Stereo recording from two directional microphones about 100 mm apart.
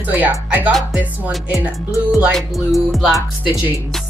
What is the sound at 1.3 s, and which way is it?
Speech, centre (ahead or behind).